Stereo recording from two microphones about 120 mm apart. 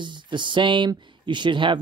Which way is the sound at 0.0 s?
40° right (ahead or behind).